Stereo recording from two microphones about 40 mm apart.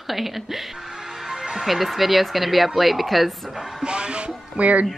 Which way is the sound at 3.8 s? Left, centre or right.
Right.